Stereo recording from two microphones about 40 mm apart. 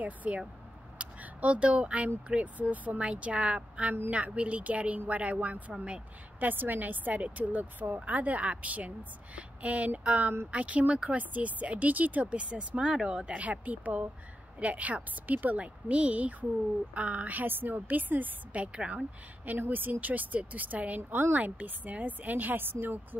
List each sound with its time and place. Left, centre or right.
0.0 s speech: right
0.9 s a sound: right
2.2 s speech: right
6.4 s a woman's voice: right
17.5 s a woman's voice: right
18.5 s speech: right
19.6 s a woman's voice: right